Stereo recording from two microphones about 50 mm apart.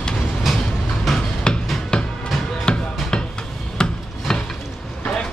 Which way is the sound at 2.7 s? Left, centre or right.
Centre.